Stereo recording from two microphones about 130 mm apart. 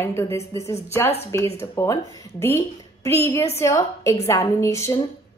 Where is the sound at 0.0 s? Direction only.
20° left (ahead or behind).